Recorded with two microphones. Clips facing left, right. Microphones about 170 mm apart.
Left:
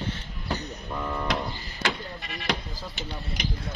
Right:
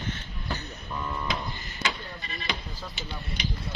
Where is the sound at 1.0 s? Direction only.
65° left (ahead or behind).